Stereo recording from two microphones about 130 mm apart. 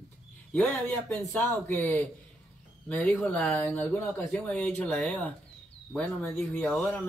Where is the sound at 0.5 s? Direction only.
10° left (ahead or behind).